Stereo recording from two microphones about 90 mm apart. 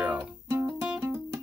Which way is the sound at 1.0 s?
30° right (ahead or behind).